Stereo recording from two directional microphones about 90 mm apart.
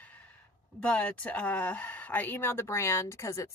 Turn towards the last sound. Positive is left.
turn(degrees=35)  # may be behind; listen again after turning